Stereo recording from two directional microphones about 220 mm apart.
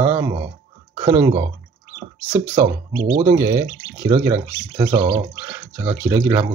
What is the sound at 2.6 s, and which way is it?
Speech, 15° right (ahead or behind).